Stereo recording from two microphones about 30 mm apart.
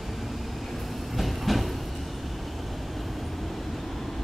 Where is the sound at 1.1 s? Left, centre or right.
Centre.